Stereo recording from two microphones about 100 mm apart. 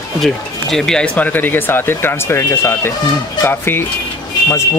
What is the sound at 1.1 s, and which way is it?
Speech, 20° left (ahead or behind).